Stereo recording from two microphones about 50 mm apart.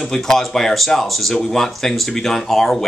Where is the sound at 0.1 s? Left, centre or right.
Centre.